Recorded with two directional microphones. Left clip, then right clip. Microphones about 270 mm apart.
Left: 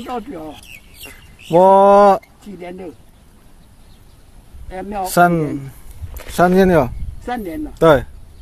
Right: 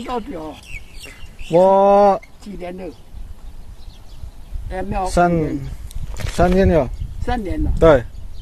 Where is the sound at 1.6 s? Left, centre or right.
Centre.